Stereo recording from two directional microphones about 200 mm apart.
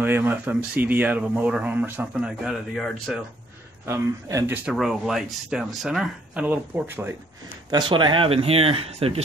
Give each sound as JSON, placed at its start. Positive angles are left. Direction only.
{"t": 0.0, "sound": "speech", "side_deg": -10}
{"t": 3.8, "sound": "speech", "side_deg": -15}
{"t": 4.6, "sound": "speech", "side_deg": 0}
{"t": 7.7, "sound": "speech", "side_deg": -25}